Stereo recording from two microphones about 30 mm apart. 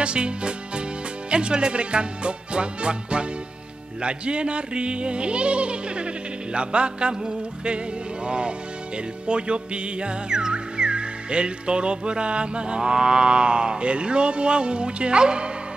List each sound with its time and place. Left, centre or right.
0.0 s music: right
8.3 s music: right